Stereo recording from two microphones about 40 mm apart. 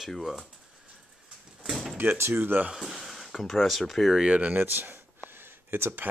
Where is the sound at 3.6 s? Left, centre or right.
Centre.